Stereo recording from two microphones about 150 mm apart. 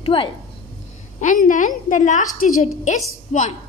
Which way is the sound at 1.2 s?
60° left (ahead or behind).